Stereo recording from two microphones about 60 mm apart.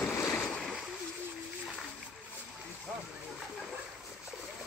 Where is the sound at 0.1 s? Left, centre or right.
Left.